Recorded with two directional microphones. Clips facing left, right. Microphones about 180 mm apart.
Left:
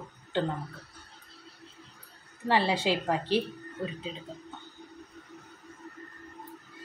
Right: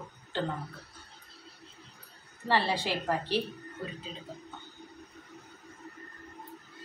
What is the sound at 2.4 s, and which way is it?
Speech, 20° left (ahead or behind).